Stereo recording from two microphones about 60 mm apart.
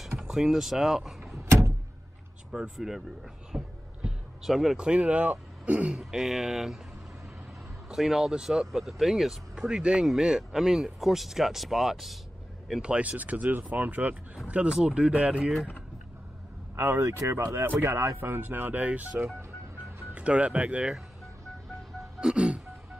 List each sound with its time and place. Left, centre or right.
0.3 s speech: centre
2.5 s speech: centre
3.5 s a sound: centre
4.4 s speech: centre
4.7 s speech: centre
5.9 s speech: centre
7.9 s speech: centre
12.8 s speech: centre
16.7 s speech: right
22.2 s music: centre